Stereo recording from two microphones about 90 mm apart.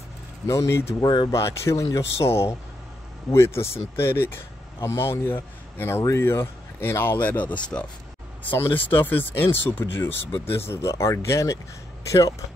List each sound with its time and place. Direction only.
0.5 s speech: 30° left (ahead or behind)
1.0 s speech: 55° left (ahead or behind)
1.3 s speech: 30° left (ahead or behind)
10.2 s speech: 90° left
10.5 s speech: 30° left (ahead or behind)